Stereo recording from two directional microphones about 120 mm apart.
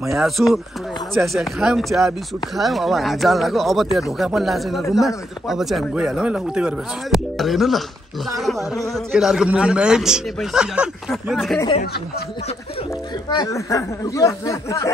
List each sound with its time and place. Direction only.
0.1 s speech: centre (ahead or behind)
8.9 s speech: centre (ahead or behind)
13.3 s speech: 30° left (ahead or behind)